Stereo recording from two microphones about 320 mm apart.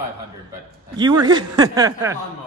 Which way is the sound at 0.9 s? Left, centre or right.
Centre.